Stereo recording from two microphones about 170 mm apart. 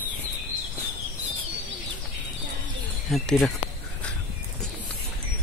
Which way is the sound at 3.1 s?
Centre (ahead or behind).